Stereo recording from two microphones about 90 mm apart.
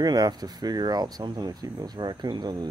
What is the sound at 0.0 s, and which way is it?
Speech, 50° right (ahead or behind).